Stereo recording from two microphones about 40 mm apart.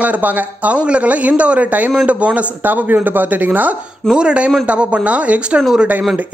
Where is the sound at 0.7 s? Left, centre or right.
Right.